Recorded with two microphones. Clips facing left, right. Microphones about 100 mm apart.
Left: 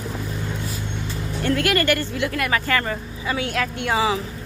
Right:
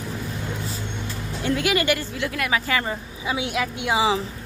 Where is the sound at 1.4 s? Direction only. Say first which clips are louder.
Left 1 dB; 5° right (ahead or behind).